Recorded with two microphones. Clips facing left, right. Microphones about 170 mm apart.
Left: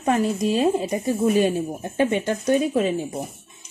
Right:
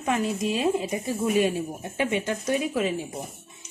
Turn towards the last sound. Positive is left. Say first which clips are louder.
# left 5 dB
turn(degrees=35)  # may be behind; listen again after turning